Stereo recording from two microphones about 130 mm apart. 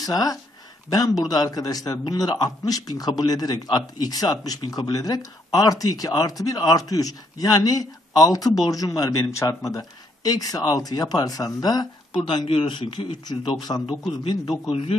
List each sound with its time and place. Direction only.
0.0 s a man's voice: 30° left (ahead or behind)
12.3 s speech: 45° left (ahead or behind)
14.7 s a man's voice: 45° left (ahead or behind)